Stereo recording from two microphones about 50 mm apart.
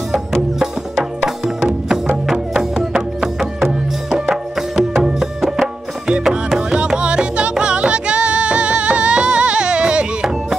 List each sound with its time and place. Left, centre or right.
1.2 s music: centre
3.5 s music: centre
6.0 s music: centre